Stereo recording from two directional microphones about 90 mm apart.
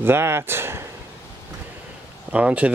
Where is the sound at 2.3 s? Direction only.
15° right (ahead or behind).